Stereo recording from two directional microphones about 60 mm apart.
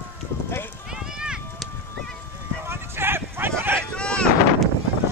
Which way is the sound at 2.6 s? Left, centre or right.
Right.